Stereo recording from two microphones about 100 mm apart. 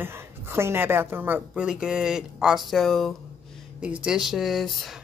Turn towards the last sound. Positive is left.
turn(degrees=0)  # may be behind; listen again after turning